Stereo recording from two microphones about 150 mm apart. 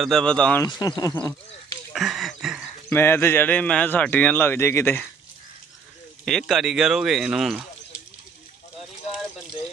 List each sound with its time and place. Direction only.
0.0 s speech: 5° left (ahead or behind)
0.7 s speech: 30° left (ahead or behind)
2.0 s a sound: centre (ahead or behind)
2.9 s speech: 15° left (ahead or behind)
6.2 s speech: centre (ahead or behind)